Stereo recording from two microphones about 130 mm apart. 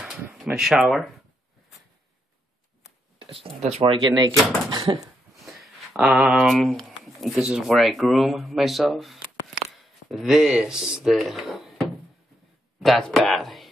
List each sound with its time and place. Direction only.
0.0 s a sound: 5° right (ahead or behind)
0.6 s speech: 5° right (ahead or behind)
3.2 s speech: 45° right (ahead or behind)
4.0 s speech: 35° right (ahead or behind)
5.3 s speech: centre (ahead or behind)